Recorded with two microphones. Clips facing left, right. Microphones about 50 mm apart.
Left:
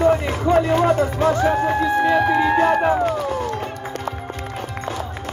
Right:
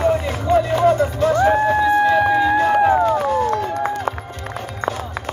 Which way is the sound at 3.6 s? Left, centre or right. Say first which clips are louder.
Right 6 dB; right.